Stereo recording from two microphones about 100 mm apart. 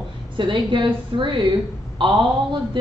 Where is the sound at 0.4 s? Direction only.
55° right (ahead or behind).